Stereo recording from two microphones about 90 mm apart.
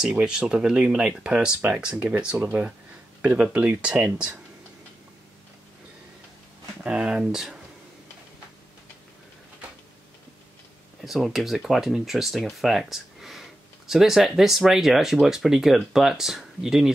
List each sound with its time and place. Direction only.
0.0 s speech: 5° right (ahead or behind)
6.8 s speech: 10° right (ahead or behind)
11.1 s speech: centre (ahead or behind)